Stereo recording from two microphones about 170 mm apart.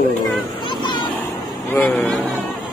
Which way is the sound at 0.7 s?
25° left (ahead or behind).